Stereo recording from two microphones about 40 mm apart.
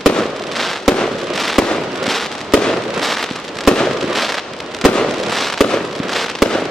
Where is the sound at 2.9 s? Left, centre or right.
Centre.